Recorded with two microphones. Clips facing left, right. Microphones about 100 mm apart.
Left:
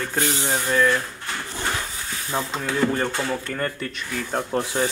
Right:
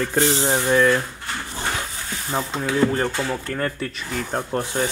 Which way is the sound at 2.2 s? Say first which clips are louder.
Right 2 dB; 5° right (ahead or behind).